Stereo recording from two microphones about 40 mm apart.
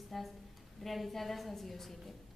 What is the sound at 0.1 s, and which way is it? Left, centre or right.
A woman's voice, centre.